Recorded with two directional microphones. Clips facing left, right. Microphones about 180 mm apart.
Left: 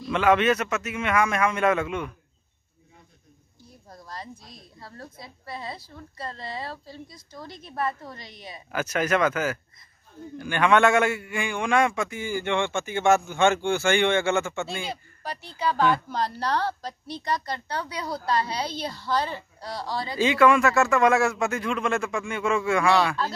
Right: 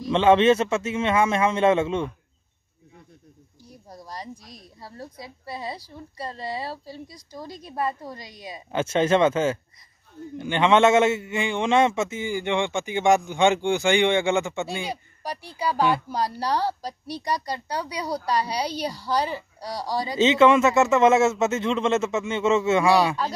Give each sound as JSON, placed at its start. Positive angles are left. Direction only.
{"t": 0.1, "sound": "a man's voice", "side_deg": -25}
{"t": 3.6, "sound": "a man's voice", "side_deg": -15}
{"t": 8.7, "sound": "a man's voice", "side_deg": -25}